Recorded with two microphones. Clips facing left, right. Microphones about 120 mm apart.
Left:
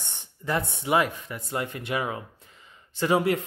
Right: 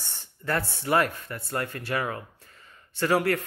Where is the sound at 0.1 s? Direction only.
20° left (ahead or behind).